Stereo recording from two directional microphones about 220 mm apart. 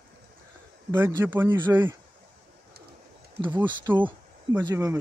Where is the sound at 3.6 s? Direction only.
20° right (ahead or behind).